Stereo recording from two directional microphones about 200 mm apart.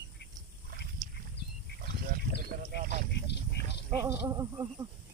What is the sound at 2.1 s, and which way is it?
Speech, 45° right (ahead or behind).